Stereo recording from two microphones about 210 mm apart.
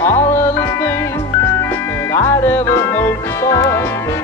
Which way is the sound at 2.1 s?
10° left (ahead or behind).